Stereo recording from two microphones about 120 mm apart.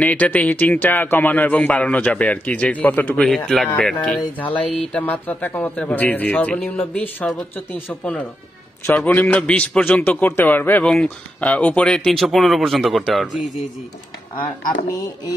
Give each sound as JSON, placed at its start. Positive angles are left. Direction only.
{"t": 0.0, "sound": "speech", "side_deg": 15}